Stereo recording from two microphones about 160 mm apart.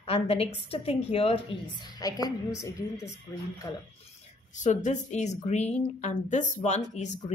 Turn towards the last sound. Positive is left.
turn(degrees=45)  # may be behind; listen again after turning